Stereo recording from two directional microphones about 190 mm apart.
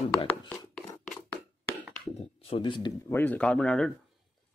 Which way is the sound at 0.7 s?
5° left (ahead or behind).